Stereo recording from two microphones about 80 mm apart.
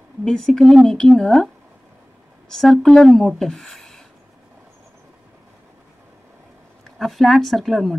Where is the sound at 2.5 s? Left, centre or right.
Centre.